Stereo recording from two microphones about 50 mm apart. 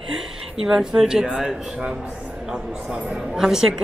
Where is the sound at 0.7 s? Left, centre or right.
Centre.